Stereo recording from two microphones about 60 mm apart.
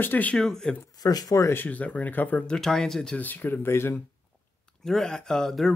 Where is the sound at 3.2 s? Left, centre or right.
Left.